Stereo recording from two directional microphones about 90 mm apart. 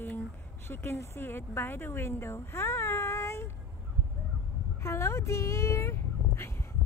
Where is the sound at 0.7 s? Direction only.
25° left (ahead or behind).